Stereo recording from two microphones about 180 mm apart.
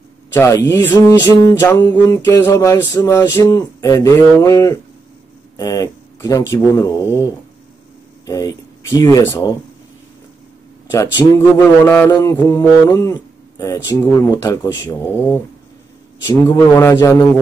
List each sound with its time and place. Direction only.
0.3 s speech: 15° left (ahead or behind)
0.7 s mantra: 15° left (ahead or behind)
8.3 s speech: 20° left (ahead or behind)
10.9 s mantra: 20° left (ahead or behind)